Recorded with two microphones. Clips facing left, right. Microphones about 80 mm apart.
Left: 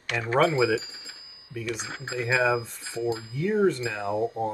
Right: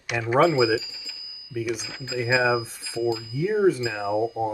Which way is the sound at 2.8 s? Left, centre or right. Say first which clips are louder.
Right 3 dB; left.